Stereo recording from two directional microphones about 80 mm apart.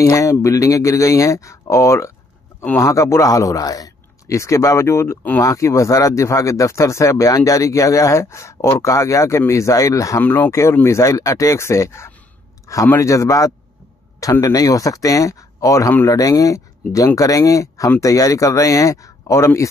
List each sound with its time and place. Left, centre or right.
0.0 s speech: left
10.2 s speech: left
10.5 s speech: left
12.6 s a sound: left
12.9 s speech: left